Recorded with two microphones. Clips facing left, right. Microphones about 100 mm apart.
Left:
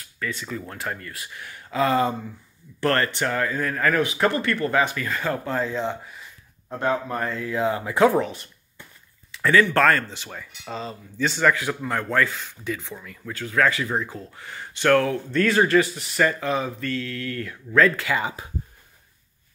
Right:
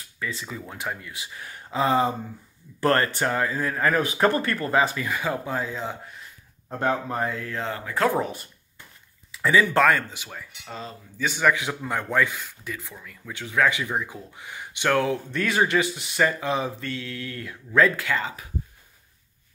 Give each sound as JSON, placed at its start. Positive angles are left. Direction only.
{"t": 0.5, "sound": "speech", "side_deg": -10}
{"t": 1.3, "sound": "speech", "side_deg": -25}
{"t": 4.0, "sound": "speech", "side_deg": -40}
{"t": 4.6, "sound": "speech", "side_deg": -25}
{"t": 6.8, "sound": "speech", "side_deg": -20}
{"t": 7.2, "sound": "speech", "side_deg": 0}
{"t": 9.4, "sound": "speech", "side_deg": -5}
{"t": 13.3, "sound": "speech", "side_deg": -20}